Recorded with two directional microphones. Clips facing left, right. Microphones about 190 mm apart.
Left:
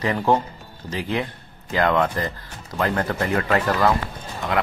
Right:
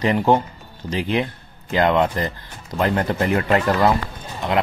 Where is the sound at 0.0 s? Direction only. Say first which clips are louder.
Right 3 dB; 20° right (ahead or behind).